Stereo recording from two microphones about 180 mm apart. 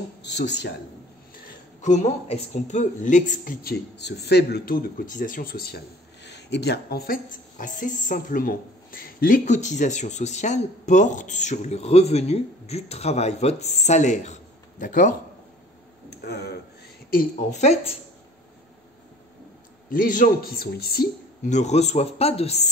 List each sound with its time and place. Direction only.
0.4 s speech: 70° left (ahead or behind)
1.8 s speech: 40° left (ahead or behind); by 5.8 s 55° left (ahead or behind)
6.2 s speech: 70° left (ahead or behind); by 15.1 s 50° left (ahead or behind)
16.1 s a man's voice: 65° left (ahead or behind)
17.1 s speech: 50° left (ahead or behind)
19.9 s a man's voice: 50° left (ahead or behind)
21.5 s speech: 40° left (ahead or behind)